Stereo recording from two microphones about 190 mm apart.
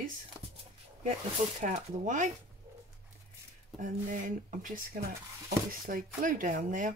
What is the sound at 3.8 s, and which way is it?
Speech, 45° right (ahead or behind).